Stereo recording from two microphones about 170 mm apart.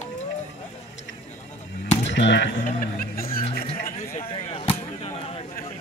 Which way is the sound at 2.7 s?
55° left (ahead or behind).